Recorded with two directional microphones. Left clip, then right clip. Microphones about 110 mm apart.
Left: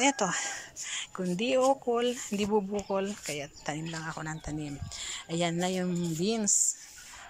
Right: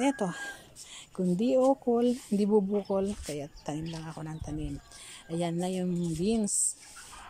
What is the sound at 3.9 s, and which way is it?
Speech, 20° right (ahead or behind).